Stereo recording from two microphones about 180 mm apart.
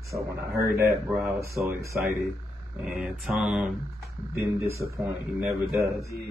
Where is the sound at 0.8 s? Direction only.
15° right (ahead or behind).